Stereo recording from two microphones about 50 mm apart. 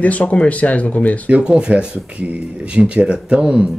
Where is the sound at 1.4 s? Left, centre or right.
Centre.